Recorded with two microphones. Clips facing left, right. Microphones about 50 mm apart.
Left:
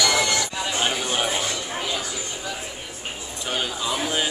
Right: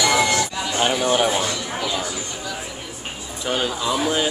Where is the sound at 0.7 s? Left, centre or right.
Centre.